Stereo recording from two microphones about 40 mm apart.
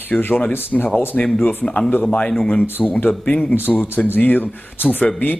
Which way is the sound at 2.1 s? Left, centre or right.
Left.